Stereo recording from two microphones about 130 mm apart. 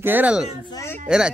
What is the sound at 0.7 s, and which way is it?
Speech, 20° left (ahead or behind).